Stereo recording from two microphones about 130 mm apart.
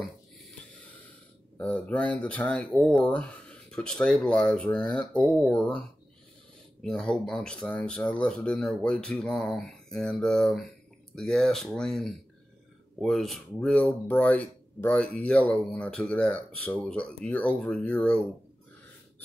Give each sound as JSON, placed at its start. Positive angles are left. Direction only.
{"t": 1.6, "sound": "speech", "side_deg": 10}